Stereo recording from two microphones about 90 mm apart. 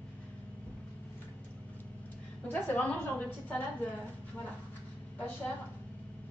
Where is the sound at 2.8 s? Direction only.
15° left (ahead or behind).